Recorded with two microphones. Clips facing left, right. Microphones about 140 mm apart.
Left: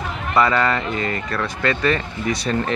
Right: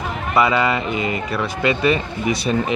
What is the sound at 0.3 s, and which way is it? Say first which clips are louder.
Speech: right 1 dB; 10° right (ahead or behind).